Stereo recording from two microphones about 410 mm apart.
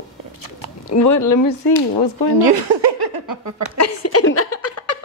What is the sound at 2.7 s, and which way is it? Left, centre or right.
Laughter, right.